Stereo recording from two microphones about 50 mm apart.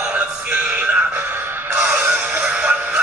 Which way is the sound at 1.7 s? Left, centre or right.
Right.